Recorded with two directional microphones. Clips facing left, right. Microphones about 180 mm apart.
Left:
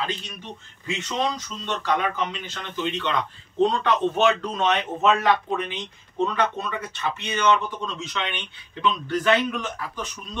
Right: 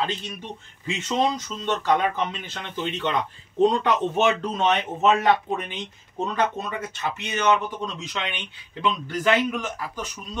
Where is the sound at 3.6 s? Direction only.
20° right (ahead or behind).